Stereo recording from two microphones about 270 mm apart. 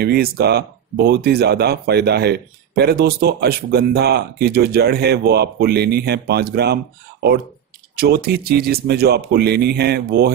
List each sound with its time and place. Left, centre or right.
0.0 s speech: right